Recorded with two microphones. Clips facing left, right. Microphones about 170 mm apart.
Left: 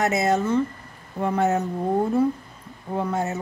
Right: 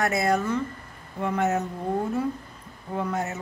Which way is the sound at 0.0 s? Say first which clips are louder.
Left 2 dB; 20° left (ahead or behind).